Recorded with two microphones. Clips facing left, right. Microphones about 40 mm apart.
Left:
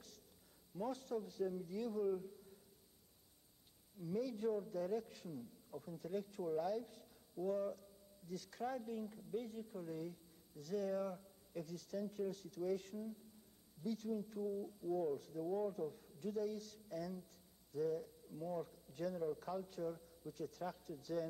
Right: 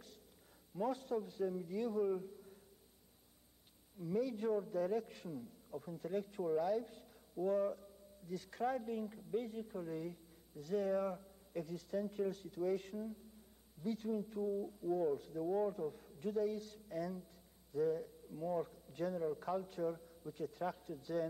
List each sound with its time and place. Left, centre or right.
0.7 s a man's voice: right
4.0 s a man's voice: right